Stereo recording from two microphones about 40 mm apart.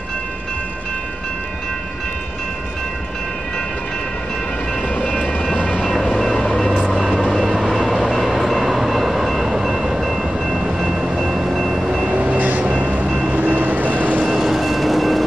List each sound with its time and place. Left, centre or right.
4.8 s train: left
5.9 s vehicle: centre
6.9 s vehicle: centre
7.8 s train: centre
11.8 s train: centre
12.1 s train: right
13.3 s vehicle: right
14.3 s train: centre